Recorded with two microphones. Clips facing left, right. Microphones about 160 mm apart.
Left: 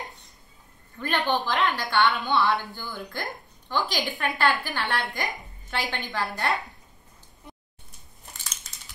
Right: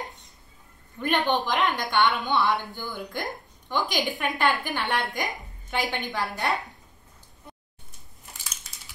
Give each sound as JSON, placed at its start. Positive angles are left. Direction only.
{"t": 0.9, "sound": "a woman's voice", "side_deg": -15}